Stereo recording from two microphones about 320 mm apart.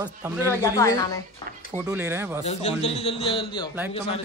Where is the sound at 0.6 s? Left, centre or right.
Centre.